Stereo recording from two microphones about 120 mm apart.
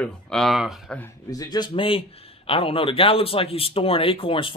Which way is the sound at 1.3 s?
35° left (ahead or behind).